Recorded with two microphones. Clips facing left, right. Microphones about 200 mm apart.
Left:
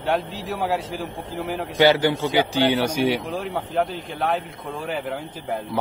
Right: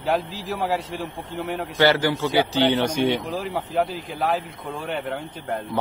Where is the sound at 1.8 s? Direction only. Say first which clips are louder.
Left 2 dB; 20° left (ahead or behind).